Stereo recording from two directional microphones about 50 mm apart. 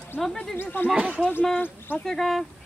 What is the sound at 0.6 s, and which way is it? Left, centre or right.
Speech, left.